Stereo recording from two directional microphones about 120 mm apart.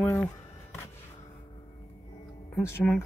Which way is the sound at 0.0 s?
15° left (ahead or behind).